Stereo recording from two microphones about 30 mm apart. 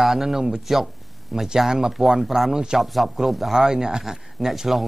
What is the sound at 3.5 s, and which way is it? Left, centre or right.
Speech, centre.